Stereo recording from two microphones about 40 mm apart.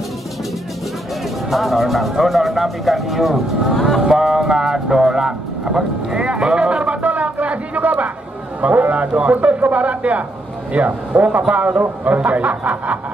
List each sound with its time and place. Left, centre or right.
1.5 s a man's voice: centre; by 11.8 s right
11.8 s a man's voice: right